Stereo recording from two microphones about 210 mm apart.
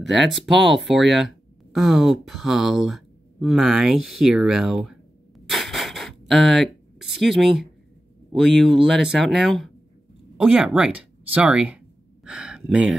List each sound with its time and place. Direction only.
0.1 s speech: centre (ahead or behind)
5.5 s a sound: centre (ahead or behind)
8.3 s speech: centre (ahead or behind)